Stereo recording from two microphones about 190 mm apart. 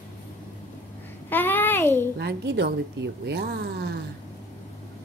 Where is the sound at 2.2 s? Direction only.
60° right (ahead or behind).